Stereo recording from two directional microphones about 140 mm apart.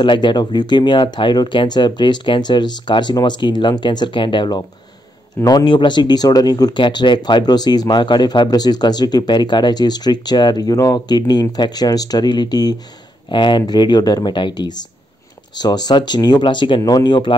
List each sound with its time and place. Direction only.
0.0 s speech: 35° left (ahead or behind)